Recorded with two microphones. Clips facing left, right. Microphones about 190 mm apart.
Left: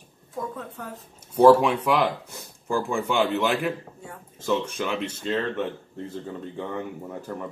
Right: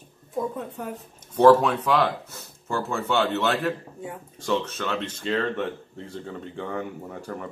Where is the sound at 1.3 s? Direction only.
10° left (ahead or behind).